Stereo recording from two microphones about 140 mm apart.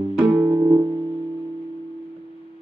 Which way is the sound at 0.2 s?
10° right (ahead or behind).